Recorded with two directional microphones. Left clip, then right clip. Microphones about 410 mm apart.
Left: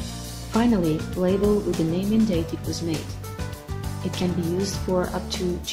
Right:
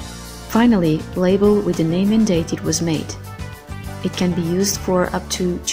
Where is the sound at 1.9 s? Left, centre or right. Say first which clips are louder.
Right 6 dB; right.